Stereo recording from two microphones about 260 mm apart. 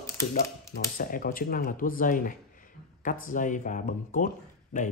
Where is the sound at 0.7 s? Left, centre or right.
Left.